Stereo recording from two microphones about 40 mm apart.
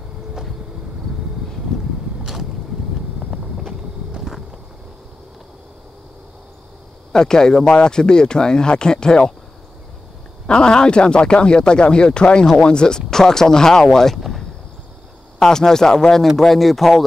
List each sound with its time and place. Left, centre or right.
3.3 s vehicle: centre
7.1 s a man's voice: centre
10.4 s a man's voice: left
14.1 s a sound: centre
15.3 s speech: centre